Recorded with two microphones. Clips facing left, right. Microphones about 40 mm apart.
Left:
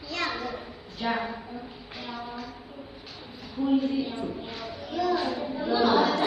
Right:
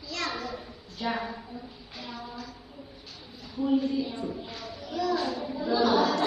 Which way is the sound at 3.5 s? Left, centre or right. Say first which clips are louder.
Left 1 dB; centre.